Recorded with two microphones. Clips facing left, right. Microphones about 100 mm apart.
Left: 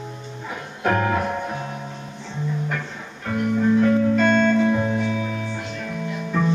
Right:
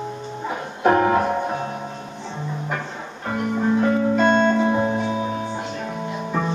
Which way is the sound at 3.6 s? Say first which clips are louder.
Left 2 dB; 25° right (ahead or behind).